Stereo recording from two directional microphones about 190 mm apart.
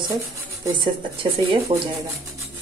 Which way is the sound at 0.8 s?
25° right (ahead or behind).